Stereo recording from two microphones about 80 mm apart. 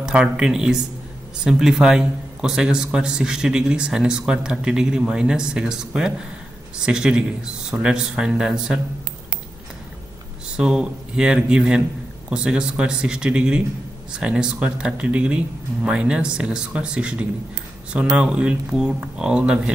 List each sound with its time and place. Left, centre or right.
0.0 s a man's voice: centre
10.5 s a man's voice: centre